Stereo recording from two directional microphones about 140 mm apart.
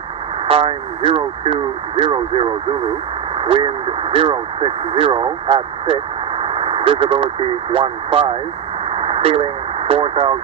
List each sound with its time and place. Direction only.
0.5 s speech: 40° right (ahead or behind)
6.4 s vehicle: 40° right (ahead or behind)
7.7 s speech: 40° right (ahead or behind)
8.9 s radio: 40° right (ahead or behind)